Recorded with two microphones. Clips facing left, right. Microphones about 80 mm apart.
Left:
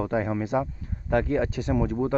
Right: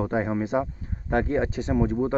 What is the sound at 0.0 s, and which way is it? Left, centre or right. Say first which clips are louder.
Speech: right 1 dB; right.